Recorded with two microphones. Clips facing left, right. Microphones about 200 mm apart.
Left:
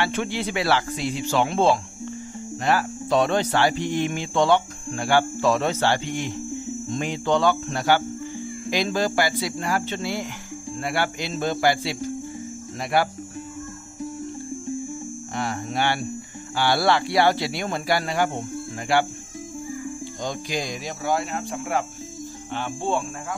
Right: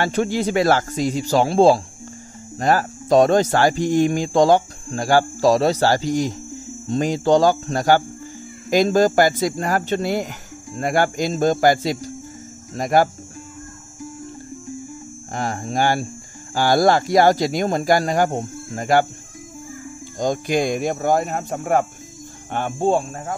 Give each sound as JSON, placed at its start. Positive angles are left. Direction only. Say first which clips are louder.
{"t": 0.0, "sound": "speech", "louder": "right 5 dB", "side_deg": -40}
{"t": 15.3, "sound": "speech", "louder": "right 4 dB", "side_deg": -40}
{"t": 20.2, "sound": "speech", "louder": "right 10 dB", "side_deg": -50}